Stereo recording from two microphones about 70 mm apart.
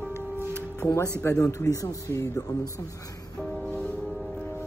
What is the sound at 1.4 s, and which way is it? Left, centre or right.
Speech, left.